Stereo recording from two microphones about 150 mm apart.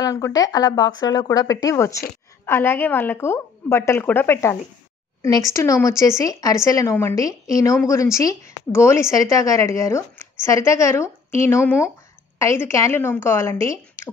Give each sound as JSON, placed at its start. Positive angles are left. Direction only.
{"t": 0.0, "sound": "a woman's voice", "side_deg": 20}